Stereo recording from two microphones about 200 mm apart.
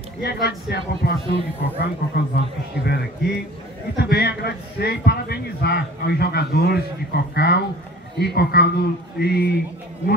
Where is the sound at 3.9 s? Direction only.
50° left (ahead or behind).